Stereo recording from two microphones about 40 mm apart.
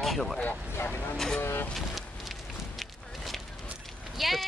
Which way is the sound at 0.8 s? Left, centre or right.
Left.